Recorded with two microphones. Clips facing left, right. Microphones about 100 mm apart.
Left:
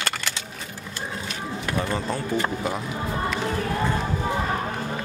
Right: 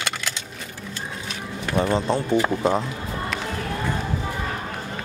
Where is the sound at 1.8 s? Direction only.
25° right (ahead or behind).